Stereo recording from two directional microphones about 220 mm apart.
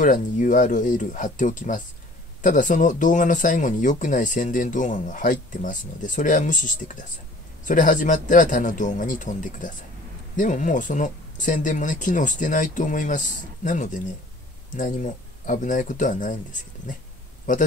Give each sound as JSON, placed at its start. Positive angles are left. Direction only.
{"t": 0.0, "sound": "speech", "side_deg": 35}
{"t": 15.4, "sound": "speech", "side_deg": 35}
{"t": 17.5, "sound": "speech", "side_deg": 35}